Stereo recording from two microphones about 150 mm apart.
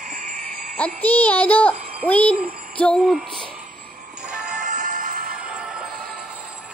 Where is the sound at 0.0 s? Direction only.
70° right (ahead or behind).